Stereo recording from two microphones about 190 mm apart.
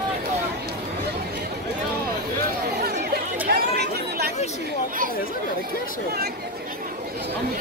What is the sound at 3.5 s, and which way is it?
Speech, 55° right (ahead or behind).